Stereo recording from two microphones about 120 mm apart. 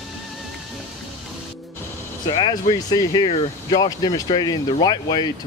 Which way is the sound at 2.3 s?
35° left (ahead or behind).